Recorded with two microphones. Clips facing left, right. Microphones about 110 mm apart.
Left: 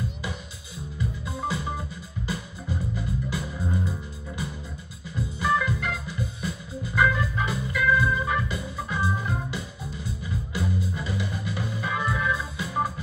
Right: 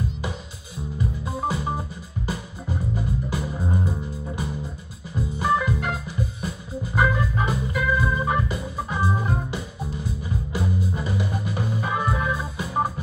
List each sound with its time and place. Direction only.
1.2 s music: 40° right (ahead or behind)
3.3 s music: 35° right (ahead or behind)
5.1 s organ: 35° right (ahead or behind)
8.5 s music: 35° right (ahead or behind)